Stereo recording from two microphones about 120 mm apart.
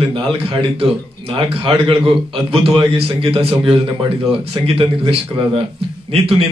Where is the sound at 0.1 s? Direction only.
50° right (ahead or behind).